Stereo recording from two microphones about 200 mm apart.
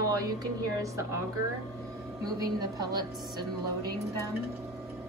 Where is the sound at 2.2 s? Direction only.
20° right (ahead or behind).